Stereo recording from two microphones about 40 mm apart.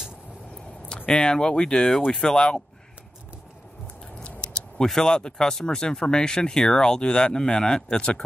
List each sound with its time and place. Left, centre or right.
0.8 s speech: left
4.2 s a sound: left
4.8 s speech: centre